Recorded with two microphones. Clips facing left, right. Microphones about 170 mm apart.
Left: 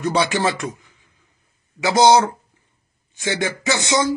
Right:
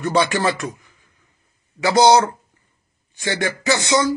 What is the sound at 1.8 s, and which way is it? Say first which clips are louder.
Speech: even; 20° left (ahead or behind).